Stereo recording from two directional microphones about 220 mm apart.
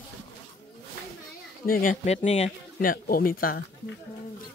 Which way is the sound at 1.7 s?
40° left (ahead or behind).